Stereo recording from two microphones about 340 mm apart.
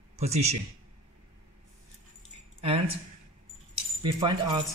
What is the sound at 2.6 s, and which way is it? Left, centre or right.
Speech, centre.